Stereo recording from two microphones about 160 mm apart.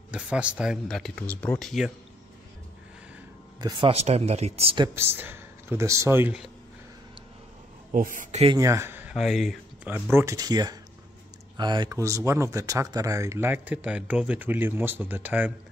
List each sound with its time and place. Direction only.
0.1 s speech: 5° right (ahead or behind)
3.9 s speech: 40° right (ahead or behind)
4.8 s speech: 15° right (ahead or behind)
7.9 s a man's voice: 55° right (ahead or behind)
8.5 s speech: 20° right (ahead or behind)
9.1 s speech: centre (ahead or behind)
10.1 s speech: 20° right (ahead or behind)